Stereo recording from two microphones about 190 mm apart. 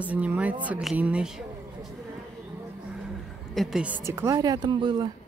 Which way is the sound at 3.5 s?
Centre (ahead or behind).